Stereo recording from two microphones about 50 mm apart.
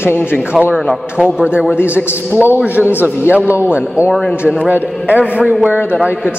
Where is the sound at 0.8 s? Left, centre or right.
Centre.